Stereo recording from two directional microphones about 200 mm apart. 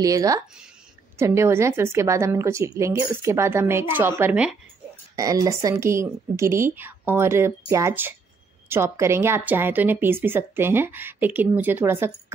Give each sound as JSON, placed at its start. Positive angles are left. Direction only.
{"t": 0.0, "sound": "speech", "side_deg": -15}